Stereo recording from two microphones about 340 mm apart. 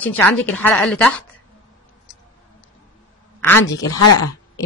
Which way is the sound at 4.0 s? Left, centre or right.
Left.